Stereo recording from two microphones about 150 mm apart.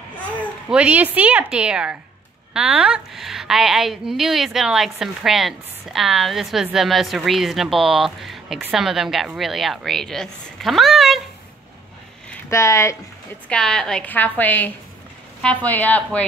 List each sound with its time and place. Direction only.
0.7 s a woman's voice: 10° right (ahead or behind)
12.4 s speech: 20° left (ahead or behind)
13.5 s a woman's voice: 5° left (ahead or behind)